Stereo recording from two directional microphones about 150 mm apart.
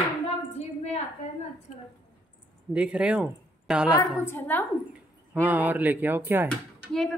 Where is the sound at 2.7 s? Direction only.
5° right (ahead or behind).